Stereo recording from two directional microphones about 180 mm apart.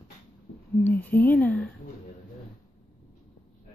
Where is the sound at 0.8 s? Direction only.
10° left (ahead or behind).